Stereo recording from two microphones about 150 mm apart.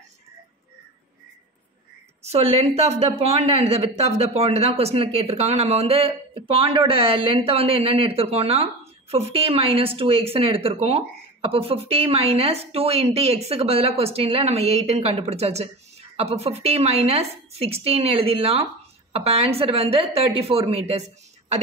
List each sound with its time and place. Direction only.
2.2 s a woman's voice: 40° right (ahead or behind)